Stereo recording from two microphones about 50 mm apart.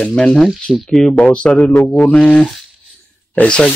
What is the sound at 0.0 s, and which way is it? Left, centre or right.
Speech, centre.